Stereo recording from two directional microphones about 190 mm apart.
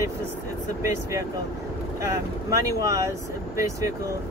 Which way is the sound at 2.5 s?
15° right (ahead or behind).